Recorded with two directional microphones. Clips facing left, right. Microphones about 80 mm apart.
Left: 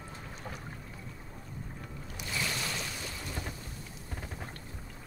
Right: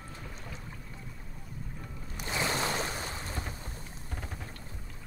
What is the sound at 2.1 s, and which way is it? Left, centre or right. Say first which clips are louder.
Boat: right 5 dB; right.